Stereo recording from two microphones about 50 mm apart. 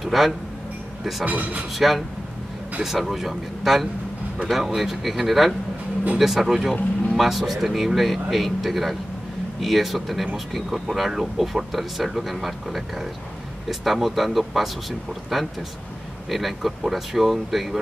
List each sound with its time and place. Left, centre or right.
0.0 s a sound: centre
1.2 s speech: right
1.8 s speech: centre